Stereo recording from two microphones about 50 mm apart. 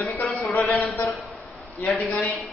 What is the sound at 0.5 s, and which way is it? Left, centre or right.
Speech, left.